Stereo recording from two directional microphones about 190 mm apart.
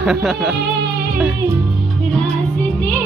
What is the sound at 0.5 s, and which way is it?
Music, 60° right (ahead or behind).